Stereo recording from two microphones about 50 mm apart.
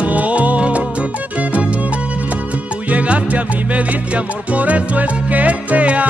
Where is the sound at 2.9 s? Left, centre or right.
Right.